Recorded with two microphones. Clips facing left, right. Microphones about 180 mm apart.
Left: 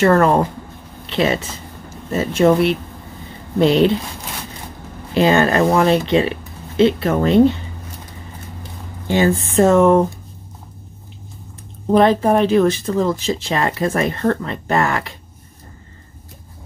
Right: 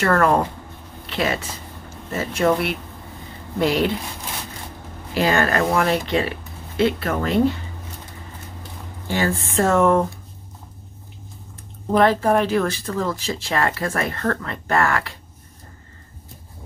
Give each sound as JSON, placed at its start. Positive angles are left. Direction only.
{"t": 0.0, "sound": "speech", "side_deg": 25}
{"t": 5.1, "sound": "speech", "side_deg": 25}
{"t": 9.0, "sound": "speech", "side_deg": 20}
{"t": 11.9, "sound": "speech", "side_deg": 20}